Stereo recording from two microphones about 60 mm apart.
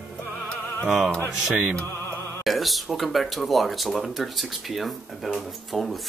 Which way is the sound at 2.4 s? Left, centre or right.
Centre.